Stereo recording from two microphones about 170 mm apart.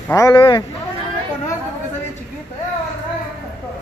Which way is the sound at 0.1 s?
20° left (ahead or behind).